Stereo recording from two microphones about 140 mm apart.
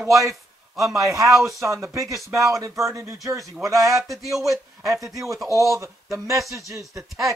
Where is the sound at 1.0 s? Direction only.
20° right (ahead or behind).